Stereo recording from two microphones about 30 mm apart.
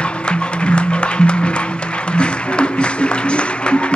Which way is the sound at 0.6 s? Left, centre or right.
Left.